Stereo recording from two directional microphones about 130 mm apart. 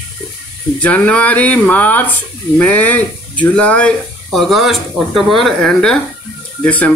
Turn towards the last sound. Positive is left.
turn(degrees=10)  # may be behind; listen again after turning